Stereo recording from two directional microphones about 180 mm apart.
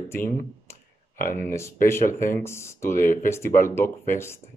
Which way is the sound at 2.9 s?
50° left (ahead or behind).